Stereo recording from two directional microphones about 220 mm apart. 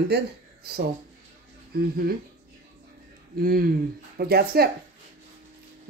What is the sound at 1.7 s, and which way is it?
Speech, 45° right (ahead or behind).